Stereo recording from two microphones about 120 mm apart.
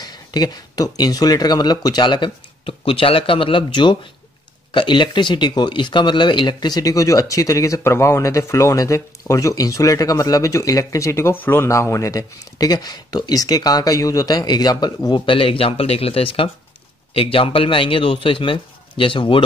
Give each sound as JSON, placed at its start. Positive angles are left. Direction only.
{"t": 0.0, "sound": "speech", "side_deg": 35}
{"t": 15.1, "sound": "speech", "side_deg": 45}